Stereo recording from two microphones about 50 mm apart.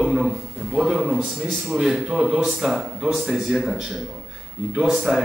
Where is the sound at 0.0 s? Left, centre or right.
Centre.